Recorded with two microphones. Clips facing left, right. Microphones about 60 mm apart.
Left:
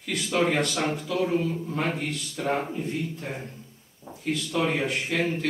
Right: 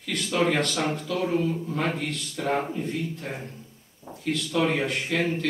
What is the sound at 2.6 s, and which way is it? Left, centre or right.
Speech, centre.